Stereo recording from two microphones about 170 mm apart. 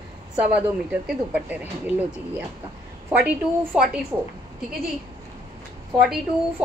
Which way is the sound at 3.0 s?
10° right (ahead or behind).